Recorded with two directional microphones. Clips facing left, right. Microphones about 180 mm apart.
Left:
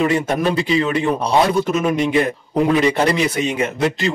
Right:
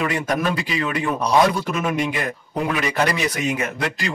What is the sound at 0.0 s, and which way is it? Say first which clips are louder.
Speech: left 5 dB; 25° left (ahead or behind).